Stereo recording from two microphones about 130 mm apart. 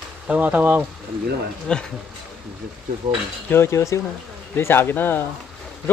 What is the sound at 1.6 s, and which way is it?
Speech, 5° left (ahead or behind).